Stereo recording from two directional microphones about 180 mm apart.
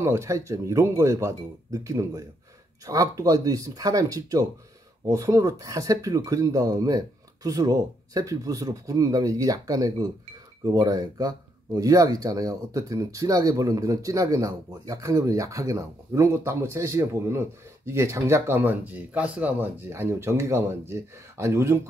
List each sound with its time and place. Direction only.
0.0 s speech: 15° right (ahead or behind)